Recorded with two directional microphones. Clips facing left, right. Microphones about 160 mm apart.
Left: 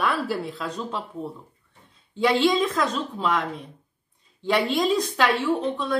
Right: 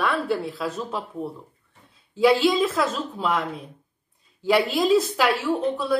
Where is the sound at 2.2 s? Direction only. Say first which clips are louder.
Right 2 dB; 5° right (ahead or behind).